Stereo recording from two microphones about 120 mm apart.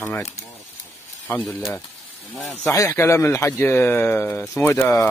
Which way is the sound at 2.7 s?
25° left (ahead or behind).